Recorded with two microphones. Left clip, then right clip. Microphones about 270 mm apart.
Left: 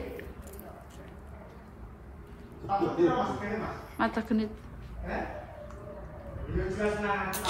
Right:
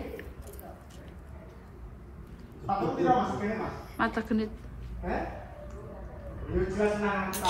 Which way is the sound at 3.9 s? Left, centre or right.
Centre.